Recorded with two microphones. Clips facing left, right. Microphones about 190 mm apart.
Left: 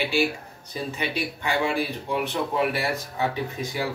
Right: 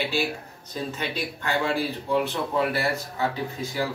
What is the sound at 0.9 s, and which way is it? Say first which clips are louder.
Speech: left 2 dB; 15° left (ahead or behind).